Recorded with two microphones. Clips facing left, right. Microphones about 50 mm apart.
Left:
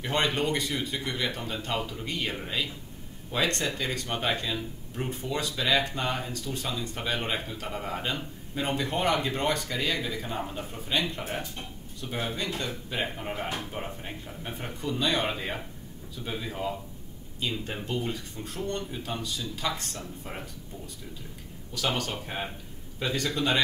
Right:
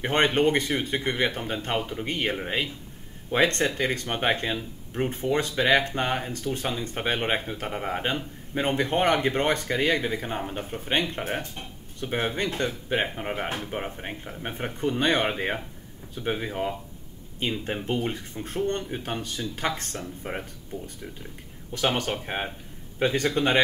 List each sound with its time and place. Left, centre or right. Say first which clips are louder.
0.0 s speech: right 6 dB; right
13.1 s speech: right 3 dB; right